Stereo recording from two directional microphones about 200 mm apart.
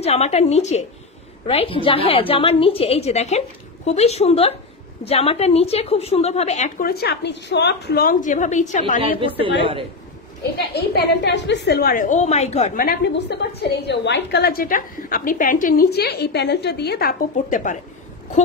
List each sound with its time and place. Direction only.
0.0 s a woman's voice: 30° left (ahead or behind)
6.9 s a woman's voice: 50° left (ahead or behind)
10.6 s a woman's voice: 50° left (ahead or behind); by 12.8 s 35° left (ahead or behind)
12.8 s a woman's voice: 55° left (ahead or behind)